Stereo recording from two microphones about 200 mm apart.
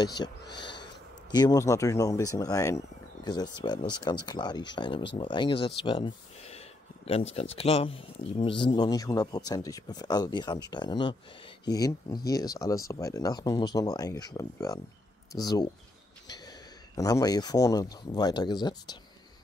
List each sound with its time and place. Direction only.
0.2 s speech: 20° left (ahead or behind)
0.6 s snort: 25° left (ahead or behind)
1.3 s speech: 20° left (ahead or behind)